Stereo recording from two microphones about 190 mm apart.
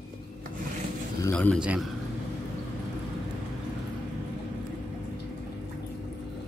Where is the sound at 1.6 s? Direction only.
5° right (ahead or behind).